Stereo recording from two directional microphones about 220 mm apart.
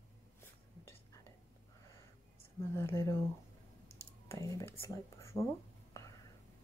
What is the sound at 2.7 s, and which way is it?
Speech, 10° left (ahead or behind).